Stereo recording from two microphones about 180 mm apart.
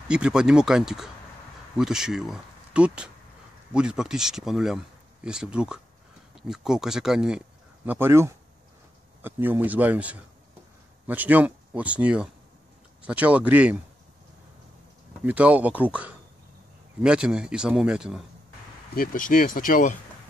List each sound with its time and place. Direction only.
0.1 s speech: 5° right (ahead or behind)
15.2 s speech: 5° right (ahead or behind)
18.9 s speech: 50° left (ahead or behind)